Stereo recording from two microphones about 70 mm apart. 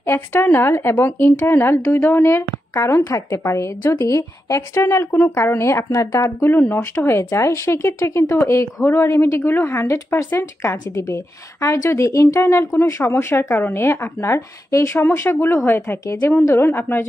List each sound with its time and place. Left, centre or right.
0.0 s a woman's voice: left
3.4 s speech: left
5.1 s a woman's voice: left
6.4 s a woman's voice: left
9.1 s a woman's voice: left
15.0 s a woman's voice: left